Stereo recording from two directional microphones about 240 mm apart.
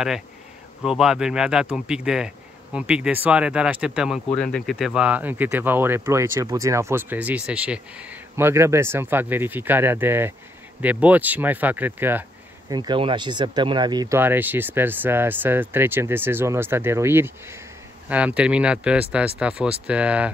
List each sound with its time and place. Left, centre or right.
0.8 s speech: centre